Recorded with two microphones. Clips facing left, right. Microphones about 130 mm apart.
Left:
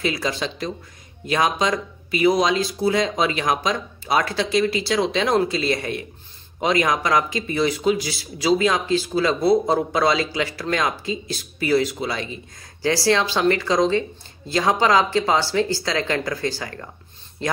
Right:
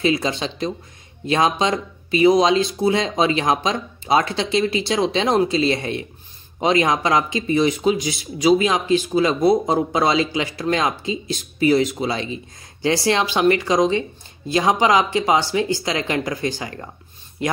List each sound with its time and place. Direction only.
0.0 s speech: 25° right (ahead or behind)